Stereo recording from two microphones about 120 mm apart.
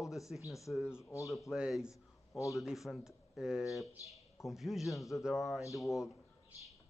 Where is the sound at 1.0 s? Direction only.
25° left (ahead or behind).